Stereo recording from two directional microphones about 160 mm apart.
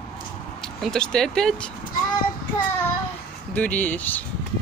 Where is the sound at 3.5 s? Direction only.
10° left (ahead or behind).